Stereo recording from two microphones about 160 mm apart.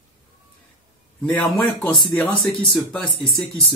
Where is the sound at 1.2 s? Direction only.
5° left (ahead or behind).